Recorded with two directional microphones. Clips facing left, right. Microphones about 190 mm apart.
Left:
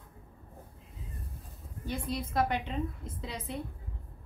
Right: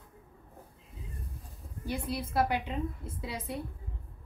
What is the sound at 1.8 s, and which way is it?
A woman's voice, 10° right (ahead or behind).